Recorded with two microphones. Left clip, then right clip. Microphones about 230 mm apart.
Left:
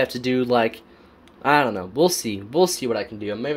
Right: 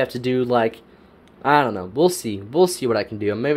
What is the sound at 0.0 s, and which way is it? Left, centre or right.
Speech, centre.